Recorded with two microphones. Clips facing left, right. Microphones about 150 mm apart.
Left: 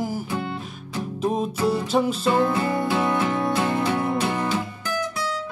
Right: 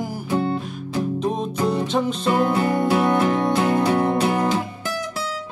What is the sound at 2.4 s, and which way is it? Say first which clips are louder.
Music: right 2 dB; 20° right (ahead or behind).